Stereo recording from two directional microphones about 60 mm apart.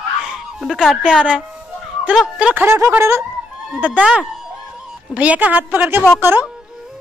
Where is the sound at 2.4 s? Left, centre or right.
Centre.